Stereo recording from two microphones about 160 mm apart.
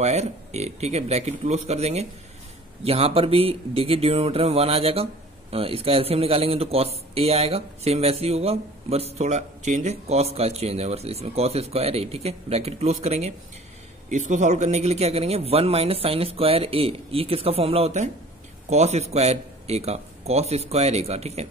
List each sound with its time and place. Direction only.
0.0 s speech: 45° right (ahead or behind)